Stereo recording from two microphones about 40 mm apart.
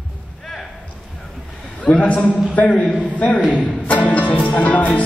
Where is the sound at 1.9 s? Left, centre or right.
Left.